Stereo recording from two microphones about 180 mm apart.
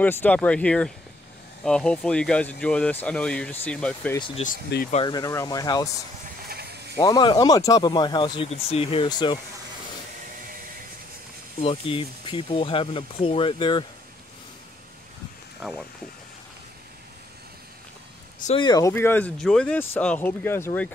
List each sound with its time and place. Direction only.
0.0 s speech: 10° left (ahead or behind)
4.4 s speech: 35° left (ahead or behind)
5.0 s speech: 20° left (ahead or behind)
6.5 s a sound: 65° right (ahead or behind)
7.0 s speech: 20° left (ahead or behind)
11.6 s speech: 30° left (ahead or behind)
18.5 s speech: 25° left (ahead or behind)